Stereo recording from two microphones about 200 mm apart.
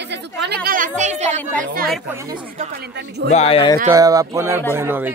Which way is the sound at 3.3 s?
30° left (ahead or behind).